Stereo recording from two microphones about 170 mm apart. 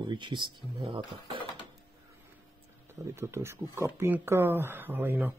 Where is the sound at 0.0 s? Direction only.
25° right (ahead or behind).